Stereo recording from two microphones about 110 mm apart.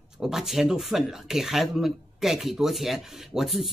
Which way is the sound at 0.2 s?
5° right (ahead or behind).